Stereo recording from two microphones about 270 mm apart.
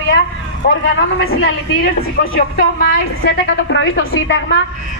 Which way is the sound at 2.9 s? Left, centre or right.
Left.